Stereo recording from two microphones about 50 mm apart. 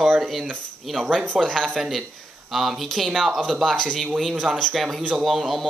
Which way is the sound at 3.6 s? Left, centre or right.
Centre.